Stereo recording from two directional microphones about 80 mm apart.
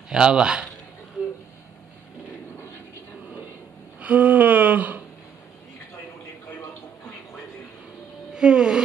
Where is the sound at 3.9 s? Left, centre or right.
Centre.